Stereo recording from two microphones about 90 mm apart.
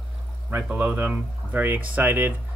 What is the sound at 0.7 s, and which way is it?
Speech, 20° right (ahead or behind).